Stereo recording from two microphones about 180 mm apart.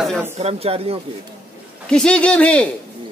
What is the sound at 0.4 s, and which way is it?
Speech, 35° right (ahead or behind).